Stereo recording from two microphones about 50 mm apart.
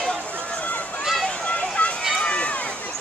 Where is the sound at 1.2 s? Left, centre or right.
Left.